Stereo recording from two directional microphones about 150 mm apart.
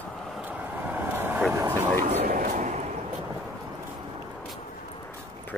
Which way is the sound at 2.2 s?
65° right (ahead or behind).